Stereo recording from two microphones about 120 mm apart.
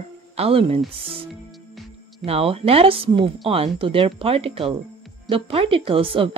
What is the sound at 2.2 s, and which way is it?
A woman's voice, 55° right (ahead or behind).